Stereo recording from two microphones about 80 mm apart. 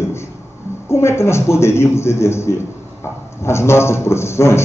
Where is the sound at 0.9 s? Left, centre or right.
Left.